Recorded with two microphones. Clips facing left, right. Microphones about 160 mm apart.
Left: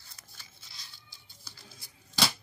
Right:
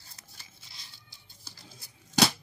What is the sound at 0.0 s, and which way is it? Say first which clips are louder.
Scissors: right 1 dB; 35° right (ahead or behind).